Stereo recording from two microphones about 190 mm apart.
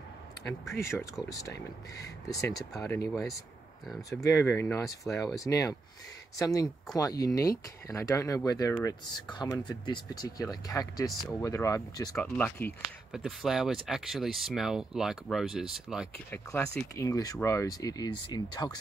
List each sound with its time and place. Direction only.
0.5 s speech: 15° left (ahead or behind)
2.2 s speech: 20° left (ahead or behind)
3.1 s speech: centre (ahead or behind)
4.2 s speech: 15° left (ahead or behind)
13.1 s speech: centre (ahead or behind)
16.3 s speech: 10° left (ahead or behind)